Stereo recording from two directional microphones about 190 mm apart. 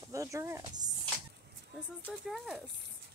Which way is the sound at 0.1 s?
15° right (ahead or behind).